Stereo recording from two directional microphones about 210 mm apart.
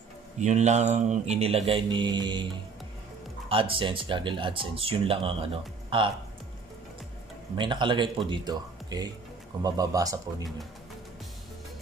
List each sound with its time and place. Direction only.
0.4 s mantra: 35° right (ahead or behind)
3.4 s speech: 25° right (ahead or behind)
7.5 s speech: 25° right (ahead or behind)